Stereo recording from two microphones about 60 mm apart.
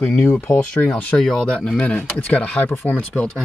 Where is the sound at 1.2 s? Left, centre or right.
Centre.